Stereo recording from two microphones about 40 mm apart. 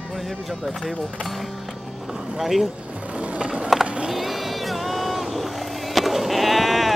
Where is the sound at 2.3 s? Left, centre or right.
Centre.